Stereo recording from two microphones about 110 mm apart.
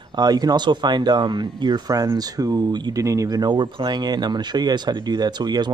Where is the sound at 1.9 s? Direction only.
30° right (ahead or behind).